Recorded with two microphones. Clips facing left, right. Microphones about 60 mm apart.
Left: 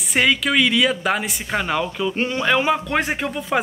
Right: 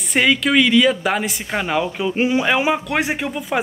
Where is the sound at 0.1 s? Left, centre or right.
Centre.